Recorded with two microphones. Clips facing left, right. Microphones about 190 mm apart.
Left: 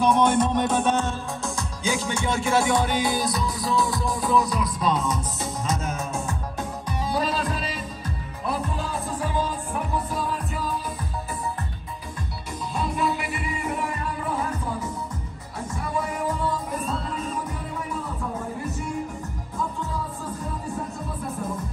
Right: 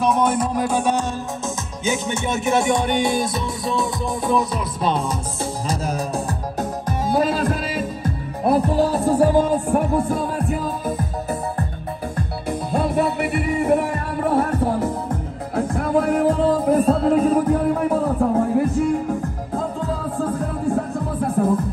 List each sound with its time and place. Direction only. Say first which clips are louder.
0.0 s music: right 1 dB; 5° right (ahead or behind)
1.9 s music: right 3 dB; 25° right (ahead or behind)
3.0 s music: right 4 dB; centre (ahead or behind)
4.6 s music: right 2 dB; 30° right (ahead or behind)
6.9 s music: right 6 dB; 50° right (ahead or behind)
9.3 s music: right 11 dB; 50° right (ahead or behind)
12.4 s music: right 7 dB; 60° right (ahead or behind)